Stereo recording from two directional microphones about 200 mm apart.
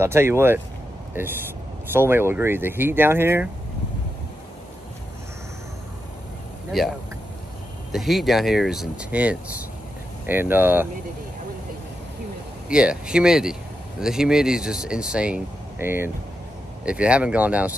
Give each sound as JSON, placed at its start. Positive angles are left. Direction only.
{"t": 0.0, "sound": "speech", "side_deg": -10}
{"t": 6.7, "sound": "speech", "side_deg": 0}
{"t": 7.9, "sound": "speech", "side_deg": 0}
{"t": 12.6, "sound": "speech", "side_deg": -5}